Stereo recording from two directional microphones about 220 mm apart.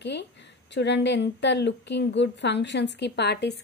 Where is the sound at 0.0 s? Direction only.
50° left (ahead or behind).